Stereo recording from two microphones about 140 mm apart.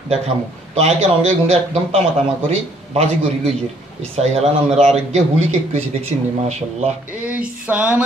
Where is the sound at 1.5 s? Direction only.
50° right (ahead or behind).